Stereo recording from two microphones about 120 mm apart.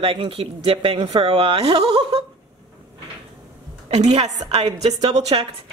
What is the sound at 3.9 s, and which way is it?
Speech, 65° right (ahead or behind).